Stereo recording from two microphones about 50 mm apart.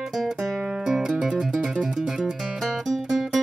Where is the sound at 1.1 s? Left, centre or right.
Right.